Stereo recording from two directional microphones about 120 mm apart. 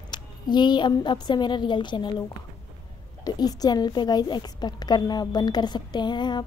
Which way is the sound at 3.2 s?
35° left (ahead or behind).